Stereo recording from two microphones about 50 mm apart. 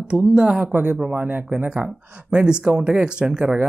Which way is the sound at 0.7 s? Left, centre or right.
Right.